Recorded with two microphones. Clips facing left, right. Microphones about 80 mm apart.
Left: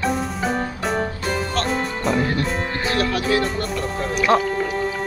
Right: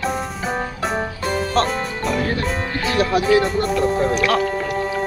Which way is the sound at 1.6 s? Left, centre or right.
Right.